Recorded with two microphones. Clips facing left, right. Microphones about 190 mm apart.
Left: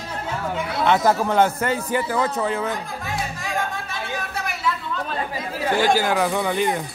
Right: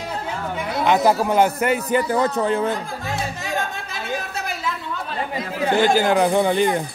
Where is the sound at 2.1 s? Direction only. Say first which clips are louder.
Right 3 dB; 30° right (ahead or behind).